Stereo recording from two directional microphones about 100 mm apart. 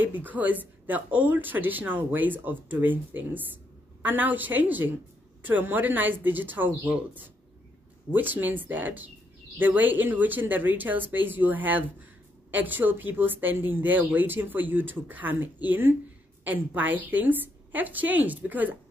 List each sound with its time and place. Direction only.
0.0 s speech: 20° right (ahead or behind)